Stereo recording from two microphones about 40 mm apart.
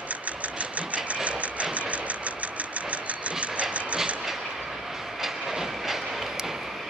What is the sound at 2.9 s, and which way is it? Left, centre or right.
Vehicle, right.